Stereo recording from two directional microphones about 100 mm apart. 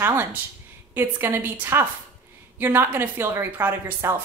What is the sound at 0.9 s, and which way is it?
A woman's voice, 25° right (ahead or behind).